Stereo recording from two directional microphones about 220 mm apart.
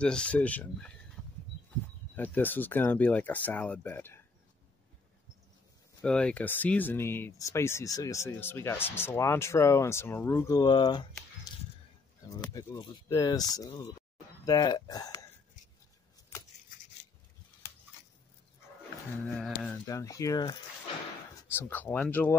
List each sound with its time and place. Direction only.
0.0 s speech: 5° left (ahead or behind)
2.1 s speech: 10° left (ahead or behind)
6.0 s speech: 5° left (ahead or behind); by 11.1 s 20° left (ahead or behind)
11.5 s a sound: 15° left (ahead or behind)
12.3 s speech: 15° left (ahead or behind)
19.2 s speech: 5° left (ahead or behind)
19.8 s speech: 15° left (ahead or behind)